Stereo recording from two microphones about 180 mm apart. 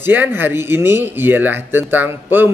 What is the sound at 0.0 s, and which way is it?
Speech, 10° right (ahead or behind).